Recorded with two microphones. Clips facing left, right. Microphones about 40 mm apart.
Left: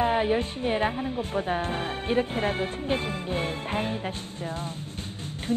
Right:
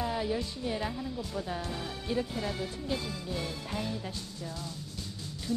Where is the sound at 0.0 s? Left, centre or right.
Left.